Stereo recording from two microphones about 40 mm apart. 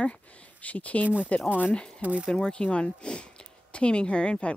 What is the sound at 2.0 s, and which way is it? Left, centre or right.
Speech, right.